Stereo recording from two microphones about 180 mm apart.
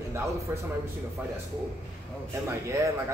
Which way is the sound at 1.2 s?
10° right (ahead or behind).